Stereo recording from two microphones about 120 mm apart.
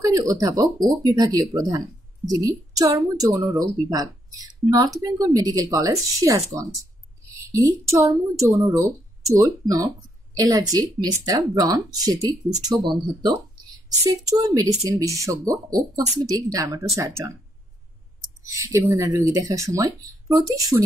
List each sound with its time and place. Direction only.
0.0 s speech: 30° right (ahead or behind)
7.2 s a sound: 25° right (ahead or behind)
7.6 s a woman's voice: 25° right (ahead or behind)
18.4 s speech: 25° right (ahead or behind)